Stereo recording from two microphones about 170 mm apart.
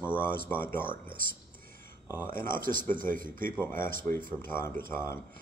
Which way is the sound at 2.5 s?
55° right (ahead or behind).